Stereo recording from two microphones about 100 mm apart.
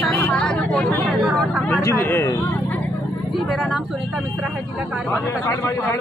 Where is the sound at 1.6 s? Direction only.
25° left (ahead or behind).